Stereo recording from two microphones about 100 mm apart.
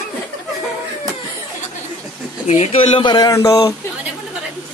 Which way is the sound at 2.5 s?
90° left.